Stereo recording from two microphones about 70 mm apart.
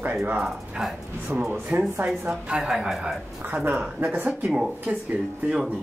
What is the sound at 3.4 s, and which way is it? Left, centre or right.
Speech, right.